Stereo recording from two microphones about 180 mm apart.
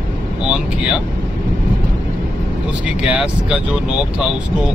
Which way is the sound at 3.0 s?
5° right (ahead or behind).